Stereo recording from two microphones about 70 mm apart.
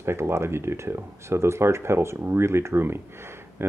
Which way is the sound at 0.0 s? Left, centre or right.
Right.